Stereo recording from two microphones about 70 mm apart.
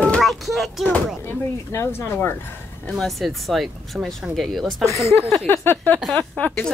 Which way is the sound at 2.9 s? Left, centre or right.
Centre.